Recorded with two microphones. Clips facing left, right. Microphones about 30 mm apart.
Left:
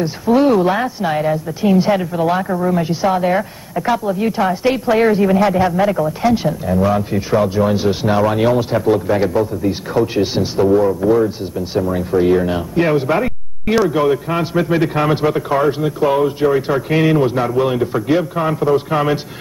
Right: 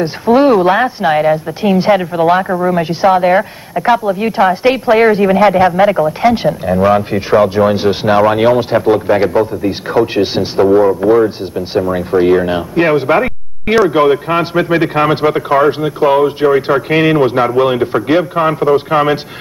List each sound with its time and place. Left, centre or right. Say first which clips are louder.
0.0 s a woman's voice: right 4 dB; right